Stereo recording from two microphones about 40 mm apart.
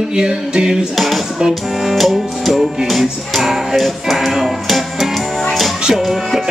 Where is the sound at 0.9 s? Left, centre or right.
Centre.